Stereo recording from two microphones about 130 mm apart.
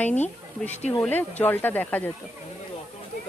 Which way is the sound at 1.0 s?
15° left (ahead or behind).